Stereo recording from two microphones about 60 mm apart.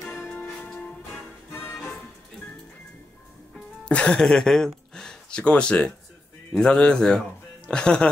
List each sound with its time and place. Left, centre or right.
1.5 s music: left
3.8 s speech: centre